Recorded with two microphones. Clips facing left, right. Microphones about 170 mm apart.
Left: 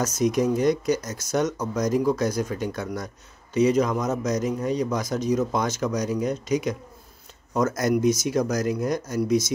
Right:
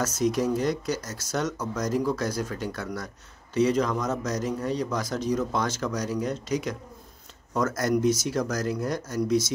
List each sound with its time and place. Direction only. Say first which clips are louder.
0.0 s a man's voice: left 3 dB; 15° left (ahead or behind)